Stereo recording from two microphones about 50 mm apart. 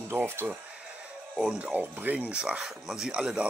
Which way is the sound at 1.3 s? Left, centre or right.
Right.